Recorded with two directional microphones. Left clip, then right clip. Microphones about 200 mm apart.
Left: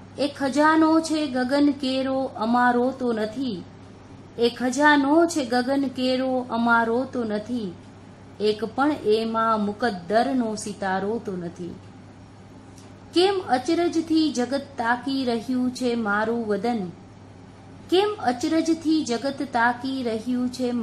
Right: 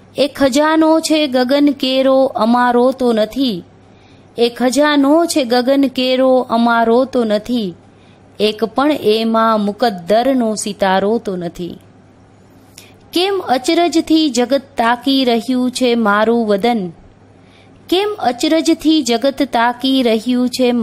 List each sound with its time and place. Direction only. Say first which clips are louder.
0.2 s a woman's voice: right 9 dB; 45° right (ahead or behind)
4.4 s a woman's voice: right 8 dB; 45° right (ahead or behind)
13.1 s a woman's voice: right 6 dB; 45° right (ahead or behind)
17.8 s a woman's voice: right 6 dB; 45° right (ahead or behind)